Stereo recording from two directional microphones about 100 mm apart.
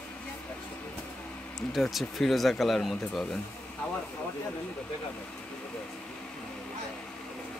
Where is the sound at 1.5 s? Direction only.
Centre (ahead or behind).